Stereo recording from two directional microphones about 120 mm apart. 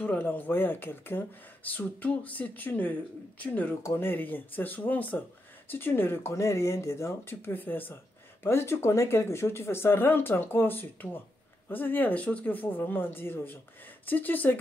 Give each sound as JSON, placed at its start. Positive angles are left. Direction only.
{"t": 0.0, "sound": "speech", "side_deg": 10}